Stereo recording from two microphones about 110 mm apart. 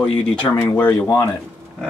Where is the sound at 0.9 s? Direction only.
25° left (ahead or behind).